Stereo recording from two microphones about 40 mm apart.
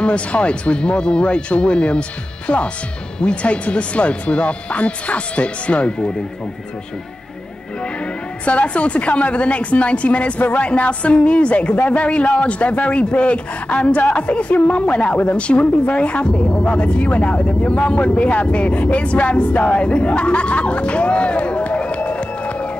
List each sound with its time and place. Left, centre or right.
0.0 s a man's voice: left
7.8 s a man's voice: left
11.7 s speech: left
12.1 s a man's voice: left